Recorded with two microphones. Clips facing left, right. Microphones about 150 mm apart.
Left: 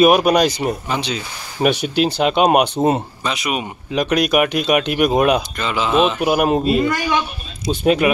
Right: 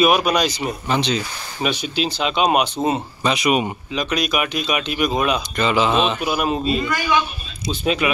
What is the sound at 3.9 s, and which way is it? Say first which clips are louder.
Speech: left 6 dB; 55° left (ahead or behind).